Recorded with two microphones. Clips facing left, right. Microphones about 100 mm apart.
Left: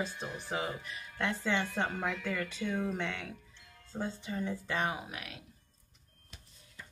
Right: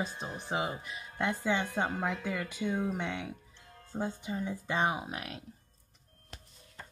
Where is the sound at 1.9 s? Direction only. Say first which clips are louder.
Right 2 dB; 30° right (ahead or behind).